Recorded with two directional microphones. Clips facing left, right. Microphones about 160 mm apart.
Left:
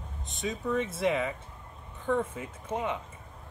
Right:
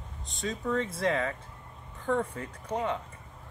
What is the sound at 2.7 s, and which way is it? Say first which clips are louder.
Speech: right 1 dB; 15° left (ahead or behind).